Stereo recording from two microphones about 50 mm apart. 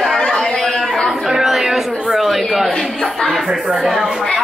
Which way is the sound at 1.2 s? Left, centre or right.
Centre.